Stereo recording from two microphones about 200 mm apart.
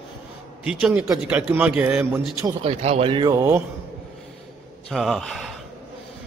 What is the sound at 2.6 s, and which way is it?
Speech, 30° right (ahead or behind).